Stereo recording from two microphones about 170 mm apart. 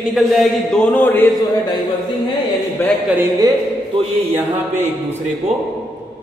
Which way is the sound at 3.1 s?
20° right (ahead or behind).